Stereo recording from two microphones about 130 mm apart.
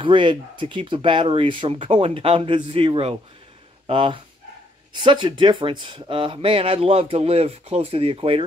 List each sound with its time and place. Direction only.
0.0 s speech: 40° right (ahead or behind)